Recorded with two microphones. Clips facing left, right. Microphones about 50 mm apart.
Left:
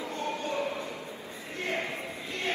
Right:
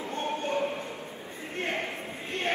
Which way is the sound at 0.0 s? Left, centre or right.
Right.